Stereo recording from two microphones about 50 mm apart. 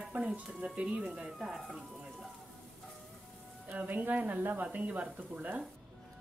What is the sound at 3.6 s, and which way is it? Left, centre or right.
Speech, right.